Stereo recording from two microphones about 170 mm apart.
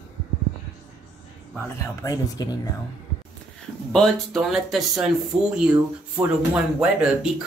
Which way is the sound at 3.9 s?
5° left (ahead or behind).